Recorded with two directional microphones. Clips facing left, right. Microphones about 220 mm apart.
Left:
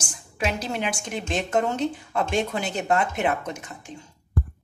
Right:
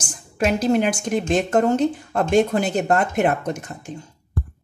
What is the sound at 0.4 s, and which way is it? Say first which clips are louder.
A woman's voice: right 9 dB; 45° right (ahead or behind).